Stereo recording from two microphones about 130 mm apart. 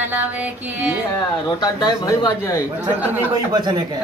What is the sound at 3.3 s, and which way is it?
Speech, 35° right (ahead or behind).